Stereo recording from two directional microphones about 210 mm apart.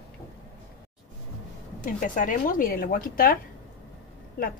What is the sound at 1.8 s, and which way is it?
Speech, 40° left (ahead or behind).